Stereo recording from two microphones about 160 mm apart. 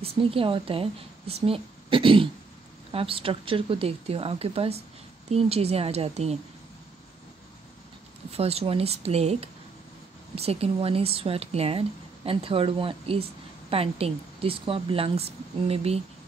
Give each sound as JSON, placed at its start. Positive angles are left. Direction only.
{"t": 0.0, "sound": "a woman's voice", "side_deg": -35}
{"t": 8.3, "sound": "a woman's voice", "side_deg": -40}